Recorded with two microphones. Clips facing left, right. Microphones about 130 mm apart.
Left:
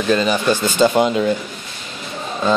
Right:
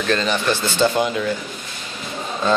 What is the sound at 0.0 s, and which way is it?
Speech, 10° left (ahead or behind).